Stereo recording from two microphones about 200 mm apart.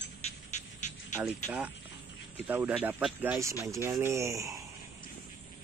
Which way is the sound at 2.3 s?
10° right (ahead or behind).